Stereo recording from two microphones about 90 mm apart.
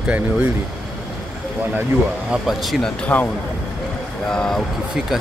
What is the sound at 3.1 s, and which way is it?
Speech, 20° left (ahead or behind).